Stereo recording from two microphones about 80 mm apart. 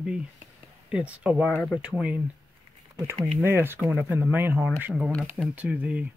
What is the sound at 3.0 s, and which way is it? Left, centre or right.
Speech, right.